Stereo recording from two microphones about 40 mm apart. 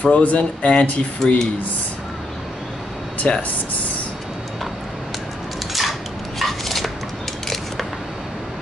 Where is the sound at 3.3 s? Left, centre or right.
Left.